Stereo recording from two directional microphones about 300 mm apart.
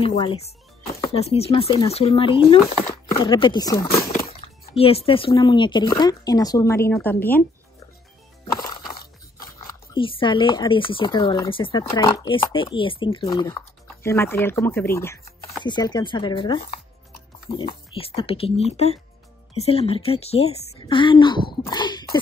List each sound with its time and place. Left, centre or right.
0.0 s speech: centre
4.4 s a sound: centre
4.7 s speech: centre
8.5 s music: centre
9.9 s speech: centre
17.9 s speech: centre